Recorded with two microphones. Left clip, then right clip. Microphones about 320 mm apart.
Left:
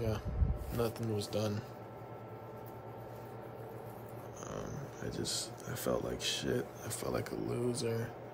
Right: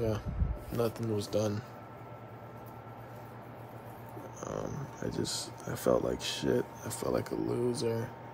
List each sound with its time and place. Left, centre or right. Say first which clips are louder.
0.7 s speech: right 4 dB; centre
5.0 s speech: right 3 dB; centre